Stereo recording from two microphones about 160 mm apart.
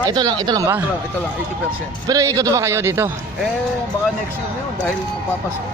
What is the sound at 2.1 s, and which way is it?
A man's voice, 20° right (ahead or behind).